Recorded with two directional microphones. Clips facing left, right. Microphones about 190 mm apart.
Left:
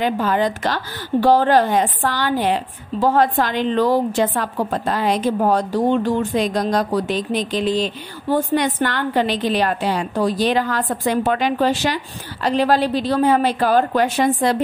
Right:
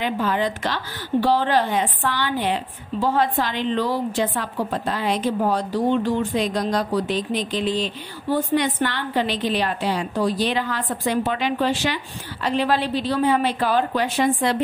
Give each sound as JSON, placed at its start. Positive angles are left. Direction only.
{"t": 0.0, "sound": "a woman's voice", "side_deg": 45}